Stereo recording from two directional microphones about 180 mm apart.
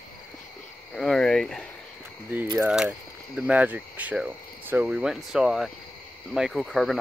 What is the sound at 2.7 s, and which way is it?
Speech, 5° right (ahead or behind).